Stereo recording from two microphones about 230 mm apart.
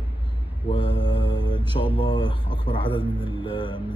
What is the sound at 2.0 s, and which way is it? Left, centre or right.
Speech, centre.